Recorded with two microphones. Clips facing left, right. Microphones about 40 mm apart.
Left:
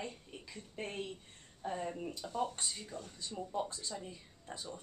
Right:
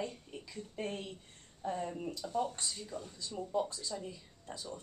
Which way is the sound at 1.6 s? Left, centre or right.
Centre.